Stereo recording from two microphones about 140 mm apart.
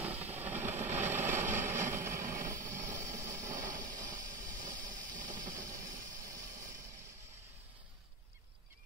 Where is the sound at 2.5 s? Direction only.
20° right (ahead or behind).